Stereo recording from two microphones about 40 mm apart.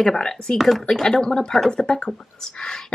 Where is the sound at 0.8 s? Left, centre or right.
Centre.